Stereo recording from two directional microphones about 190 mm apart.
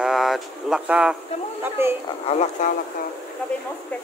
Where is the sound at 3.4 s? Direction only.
5° left (ahead or behind).